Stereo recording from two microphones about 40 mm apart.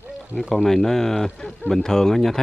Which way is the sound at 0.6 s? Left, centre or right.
Centre.